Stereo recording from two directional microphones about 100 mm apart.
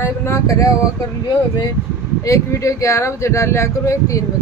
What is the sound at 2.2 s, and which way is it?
Speech, 30° left (ahead or behind).